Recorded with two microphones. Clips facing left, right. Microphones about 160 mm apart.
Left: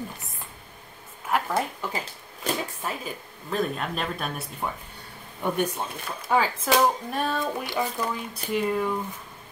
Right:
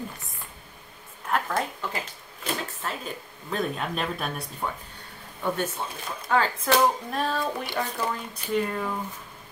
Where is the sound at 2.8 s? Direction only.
10° left (ahead or behind).